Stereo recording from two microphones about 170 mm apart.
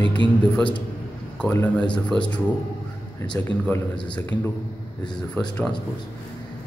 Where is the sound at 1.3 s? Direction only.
10° left (ahead or behind).